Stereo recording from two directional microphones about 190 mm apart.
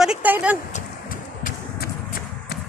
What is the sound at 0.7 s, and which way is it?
Vehicle, 45° left (ahead or behind).